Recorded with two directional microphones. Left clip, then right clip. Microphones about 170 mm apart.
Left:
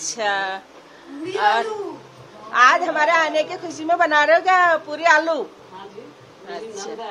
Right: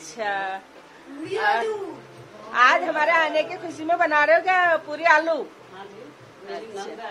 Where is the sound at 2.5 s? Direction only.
10° left (ahead or behind).